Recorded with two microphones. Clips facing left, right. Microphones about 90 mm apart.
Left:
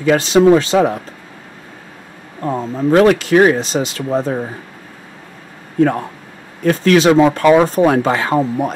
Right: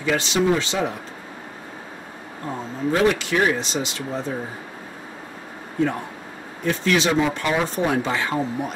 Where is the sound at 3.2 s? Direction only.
50° left (ahead or behind).